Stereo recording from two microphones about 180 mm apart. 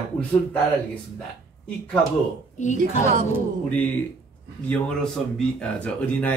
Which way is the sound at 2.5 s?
40° left (ahead or behind).